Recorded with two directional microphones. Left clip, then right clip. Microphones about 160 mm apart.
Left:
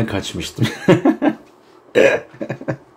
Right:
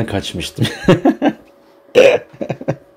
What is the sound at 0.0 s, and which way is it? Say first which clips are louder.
Speech: right 2 dB; 30° right (ahead or behind).